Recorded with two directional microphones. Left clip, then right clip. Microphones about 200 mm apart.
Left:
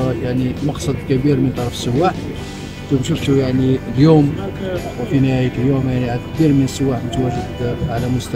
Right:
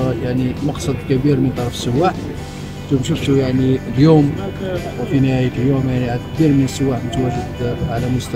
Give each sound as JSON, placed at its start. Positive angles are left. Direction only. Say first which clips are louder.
{"t": 0.0, "sound": "speech", "louder": "even", "side_deg": 0}